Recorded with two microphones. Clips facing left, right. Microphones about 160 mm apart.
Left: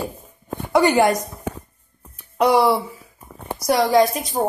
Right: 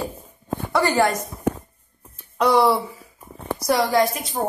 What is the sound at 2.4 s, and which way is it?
A woman's voice, 10° left (ahead or behind).